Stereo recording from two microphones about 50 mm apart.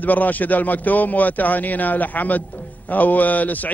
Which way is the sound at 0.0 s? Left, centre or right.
Left.